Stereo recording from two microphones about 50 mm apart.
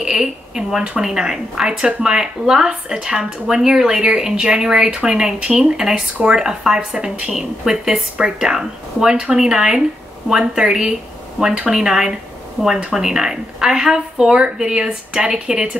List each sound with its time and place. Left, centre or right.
0.0 s speech: centre